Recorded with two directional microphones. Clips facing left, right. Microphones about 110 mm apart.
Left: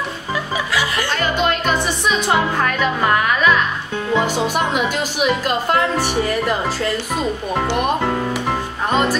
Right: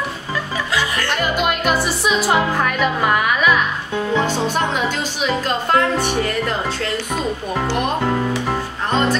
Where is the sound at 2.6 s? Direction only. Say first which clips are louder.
Even; 5° right (ahead or behind).